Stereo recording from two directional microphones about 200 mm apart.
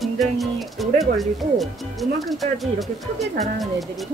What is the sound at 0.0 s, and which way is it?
Speech, centre (ahead or behind).